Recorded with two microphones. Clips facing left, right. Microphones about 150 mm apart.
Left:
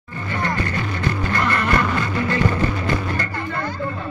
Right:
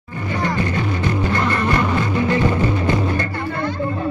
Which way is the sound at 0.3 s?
15° right (ahead or behind).